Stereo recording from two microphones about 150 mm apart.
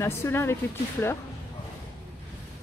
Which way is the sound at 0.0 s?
15° left (ahead or behind).